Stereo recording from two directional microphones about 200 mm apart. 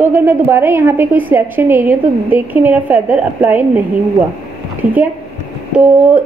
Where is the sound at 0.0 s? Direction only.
10° right (ahead or behind).